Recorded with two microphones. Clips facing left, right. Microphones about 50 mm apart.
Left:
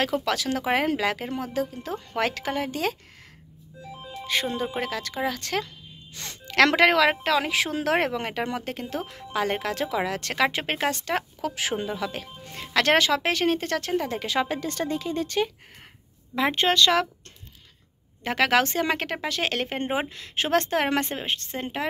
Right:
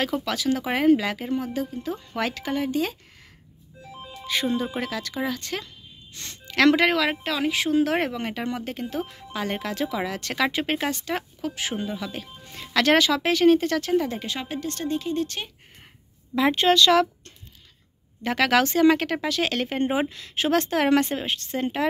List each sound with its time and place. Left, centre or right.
0.0 s a woman's voice: left
4.3 s speech: left
5.3 s a woman's voice: left
11.1 s speech: left
14.8 s speech: left
16.3 s speech: left
18.2 s speech: left